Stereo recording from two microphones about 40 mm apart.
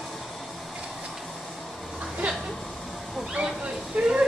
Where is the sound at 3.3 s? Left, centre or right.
Right.